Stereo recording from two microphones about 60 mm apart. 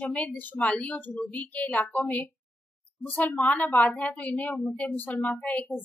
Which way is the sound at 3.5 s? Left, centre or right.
Left.